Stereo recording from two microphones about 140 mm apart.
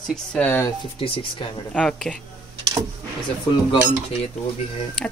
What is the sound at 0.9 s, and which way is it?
Speech, 40° left (ahead or behind).